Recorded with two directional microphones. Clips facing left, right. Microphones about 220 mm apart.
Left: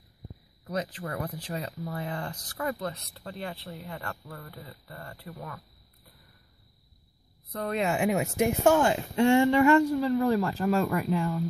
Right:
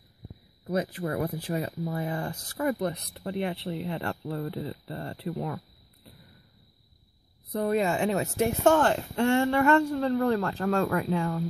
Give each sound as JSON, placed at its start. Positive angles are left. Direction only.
{"t": 0.7, "sound": "speech", "side_deg": -10}
{"t": 7.6, "sound": "speech", "side_deg": -5}
{"t": 7.9, "sound": "speech", "side_deg": 10}